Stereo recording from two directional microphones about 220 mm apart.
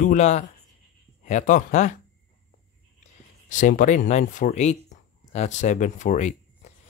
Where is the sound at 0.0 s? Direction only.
30° left (ahead or behind).